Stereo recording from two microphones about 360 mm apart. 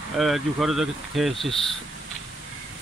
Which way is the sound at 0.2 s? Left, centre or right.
Centre.